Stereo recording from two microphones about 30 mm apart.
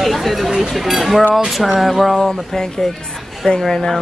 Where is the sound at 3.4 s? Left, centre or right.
Left.